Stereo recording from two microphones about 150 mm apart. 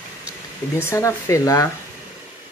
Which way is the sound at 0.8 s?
20° left (ahead or behind).